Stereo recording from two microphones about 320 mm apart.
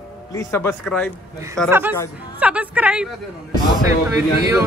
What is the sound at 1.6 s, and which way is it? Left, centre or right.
A woman's voice, centre.